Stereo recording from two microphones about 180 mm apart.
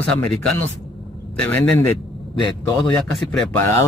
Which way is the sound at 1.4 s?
10° left (ahead or behind).